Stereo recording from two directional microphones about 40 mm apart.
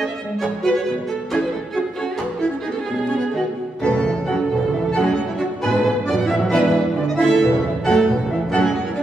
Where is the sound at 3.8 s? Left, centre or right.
Left.